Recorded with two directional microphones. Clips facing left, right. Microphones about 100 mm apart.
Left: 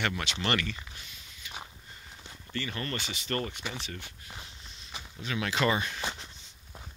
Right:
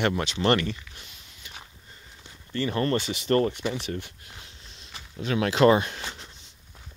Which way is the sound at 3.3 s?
45° right (ahead or behind).